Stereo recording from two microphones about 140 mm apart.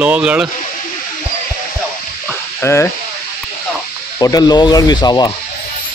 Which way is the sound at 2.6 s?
20° left (ahead or behind).